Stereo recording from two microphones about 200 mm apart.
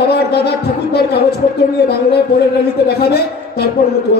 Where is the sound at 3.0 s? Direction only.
55° left (ahead or behind).